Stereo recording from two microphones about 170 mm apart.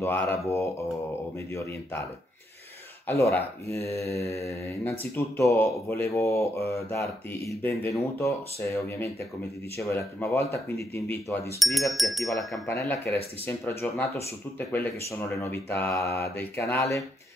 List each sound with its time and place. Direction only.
0.0 s speech: 15° left (ahead or behind)
3.1 s speech: 15° left (ahead or behind)
11.6 s speech: centre (ahead or behind)
12.4 s speech: 15° left (ahead or behind)